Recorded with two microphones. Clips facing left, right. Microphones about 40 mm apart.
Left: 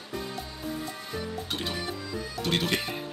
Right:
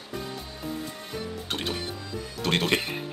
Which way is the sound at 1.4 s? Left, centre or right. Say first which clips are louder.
Right 1 dB; right.